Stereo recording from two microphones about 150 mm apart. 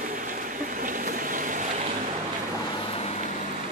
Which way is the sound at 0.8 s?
65° right (ahead or behind).